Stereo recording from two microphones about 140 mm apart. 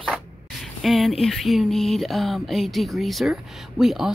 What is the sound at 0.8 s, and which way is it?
Speech, centre (ahead or behind).